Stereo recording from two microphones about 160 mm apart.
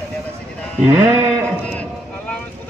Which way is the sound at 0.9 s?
15° right (ahead or behind).